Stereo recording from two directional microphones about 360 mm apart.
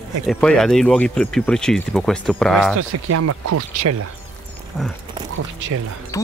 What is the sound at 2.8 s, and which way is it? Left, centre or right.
Speech, right.